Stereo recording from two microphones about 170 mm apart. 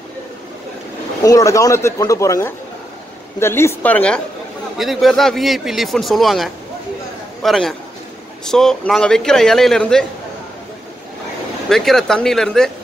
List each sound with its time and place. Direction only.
1.2 s a woman's voice: 20° left (ahead or behind); by 10.0 s 5° left (ahead or behind)
11.7 s speech: centre (ahead or behind)